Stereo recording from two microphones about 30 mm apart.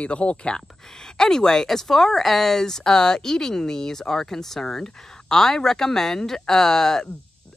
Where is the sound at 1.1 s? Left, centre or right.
Left.